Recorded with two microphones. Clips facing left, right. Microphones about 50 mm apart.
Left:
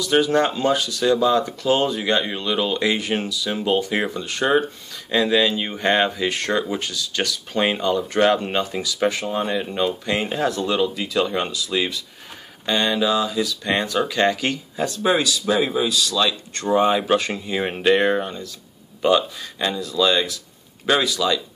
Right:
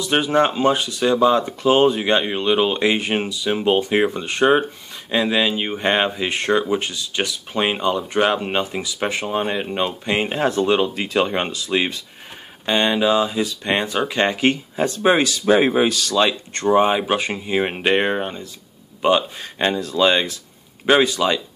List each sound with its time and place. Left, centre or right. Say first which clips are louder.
0.0 s speech: right 1 dB; right
16.2 s speech: right 3 dB; right
16.7 s speech: even; right
19.6 s speech: right 3 dB; right